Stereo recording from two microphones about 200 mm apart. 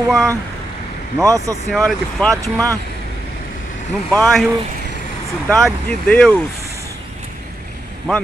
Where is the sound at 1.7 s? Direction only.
Centre (ahead or behind).